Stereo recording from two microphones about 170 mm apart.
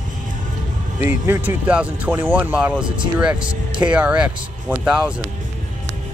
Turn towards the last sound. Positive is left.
turn(degrees=-5)  # may be behind; listen again after turning